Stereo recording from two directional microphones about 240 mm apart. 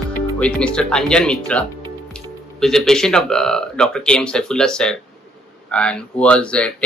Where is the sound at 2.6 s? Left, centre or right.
Centre.